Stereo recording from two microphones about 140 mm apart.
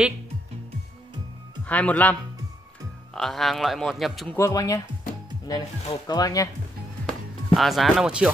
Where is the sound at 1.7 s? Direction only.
10° left (ahead or behind).